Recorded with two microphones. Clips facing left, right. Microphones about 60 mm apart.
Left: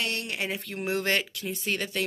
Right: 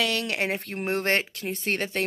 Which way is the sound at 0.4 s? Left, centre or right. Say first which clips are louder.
Right 4 dB; right.